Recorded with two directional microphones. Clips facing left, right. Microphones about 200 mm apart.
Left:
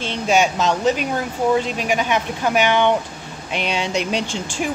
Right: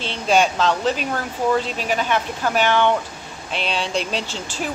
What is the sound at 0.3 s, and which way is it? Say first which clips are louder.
Speech: even; 10° left (ahead or behind).